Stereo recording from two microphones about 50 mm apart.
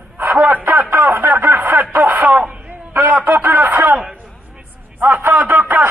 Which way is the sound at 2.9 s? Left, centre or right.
Right.